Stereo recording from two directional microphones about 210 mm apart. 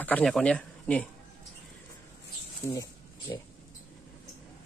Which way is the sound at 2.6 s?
10° left (ahead or behind).